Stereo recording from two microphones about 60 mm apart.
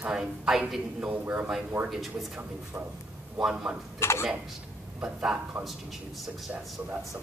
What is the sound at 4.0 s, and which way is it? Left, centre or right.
Tick-tock, left.